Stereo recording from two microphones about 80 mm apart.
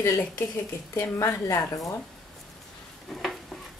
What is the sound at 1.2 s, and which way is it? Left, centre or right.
Speech, left.